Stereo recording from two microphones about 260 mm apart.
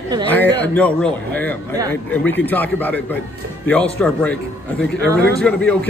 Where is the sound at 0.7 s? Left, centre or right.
Centre.